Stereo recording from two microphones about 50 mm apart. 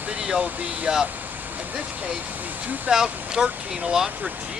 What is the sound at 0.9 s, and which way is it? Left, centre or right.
Speech, right.